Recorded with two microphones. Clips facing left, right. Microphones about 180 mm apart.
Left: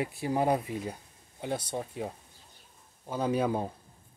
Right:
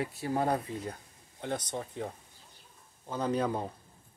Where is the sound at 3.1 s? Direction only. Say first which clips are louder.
Left 2 dB; 10° left (ahead or behind).